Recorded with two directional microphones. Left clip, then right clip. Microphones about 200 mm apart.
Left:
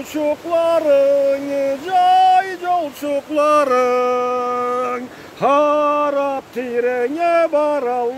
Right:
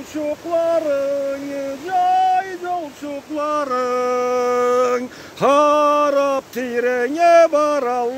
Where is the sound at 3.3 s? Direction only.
45° left (ahead or behind).